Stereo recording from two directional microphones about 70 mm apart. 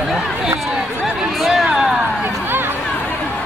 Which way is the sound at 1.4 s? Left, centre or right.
Centre.